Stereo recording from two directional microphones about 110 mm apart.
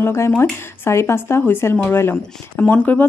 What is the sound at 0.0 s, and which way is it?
Speech, 25° left (ahead or behind).